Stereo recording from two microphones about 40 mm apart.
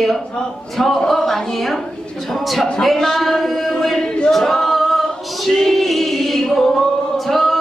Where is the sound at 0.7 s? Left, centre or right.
Centre.